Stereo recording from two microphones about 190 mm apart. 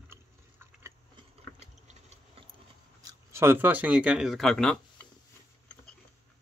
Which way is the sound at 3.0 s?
15° right (ahead or behind).